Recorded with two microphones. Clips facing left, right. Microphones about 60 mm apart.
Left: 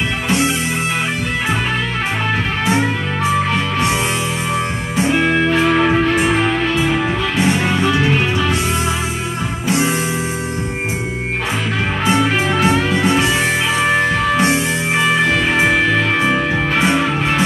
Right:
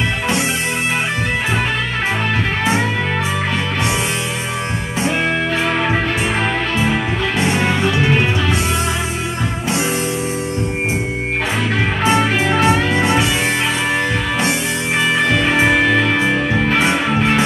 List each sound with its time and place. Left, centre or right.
12.2 s music: right